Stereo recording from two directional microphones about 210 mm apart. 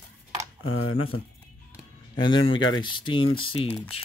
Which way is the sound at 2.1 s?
20° left (ahead or behind).